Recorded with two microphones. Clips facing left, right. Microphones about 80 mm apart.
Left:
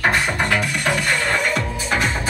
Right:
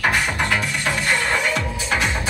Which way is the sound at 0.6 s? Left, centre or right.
Left.